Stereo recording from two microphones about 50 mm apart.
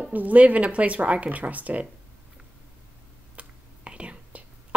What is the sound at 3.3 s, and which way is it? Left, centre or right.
Whispering, right.